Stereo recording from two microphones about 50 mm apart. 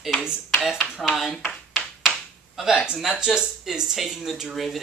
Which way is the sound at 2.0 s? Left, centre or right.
Centre.